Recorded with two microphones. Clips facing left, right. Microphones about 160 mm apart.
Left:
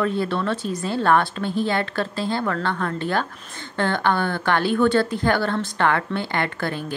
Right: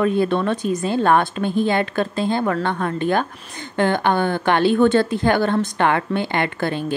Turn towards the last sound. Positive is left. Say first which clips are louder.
# right 4 dB
turn(degrees=-20)  # may be behind; listen again after turning